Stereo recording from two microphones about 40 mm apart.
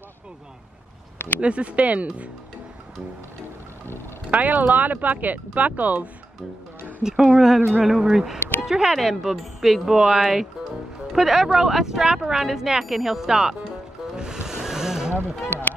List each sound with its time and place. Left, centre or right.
1.1 s a sound: left
1.4 s speech: right
4.3 s speech: right
7.0 s speech: centre
8.4 s a sound: left
8.6 s speech: centre
14.1 s music: centre